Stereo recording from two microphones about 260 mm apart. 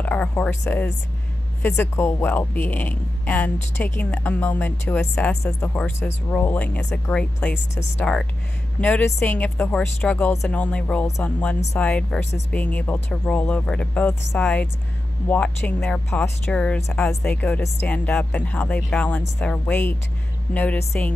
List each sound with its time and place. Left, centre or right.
0.0 s speech: centre
7.5 s speech: left
8.0 s speech: centre